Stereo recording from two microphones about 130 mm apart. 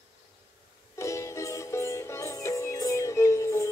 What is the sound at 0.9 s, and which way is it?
Music, 25° left (ahead or behind).